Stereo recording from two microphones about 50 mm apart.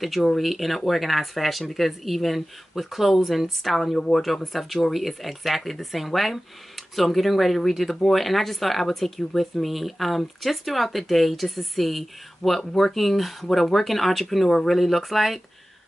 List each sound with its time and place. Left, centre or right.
0.0 s speech: centre